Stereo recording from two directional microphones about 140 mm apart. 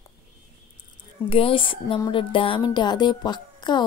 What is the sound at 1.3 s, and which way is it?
Speech, 40° left (ahead or behind).